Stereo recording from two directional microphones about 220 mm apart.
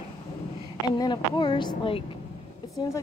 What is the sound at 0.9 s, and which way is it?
Speech, 20° left (ahead or behind).